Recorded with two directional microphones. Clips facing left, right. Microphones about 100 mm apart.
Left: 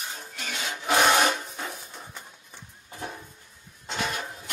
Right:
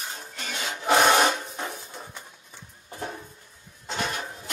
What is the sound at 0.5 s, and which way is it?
Rub, 35° right (ahead or behind).